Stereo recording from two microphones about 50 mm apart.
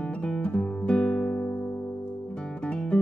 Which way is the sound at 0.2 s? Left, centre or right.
Left.